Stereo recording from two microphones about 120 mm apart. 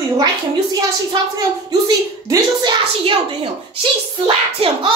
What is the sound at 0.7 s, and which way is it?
A woman's voice, 30° right (ahead or behind).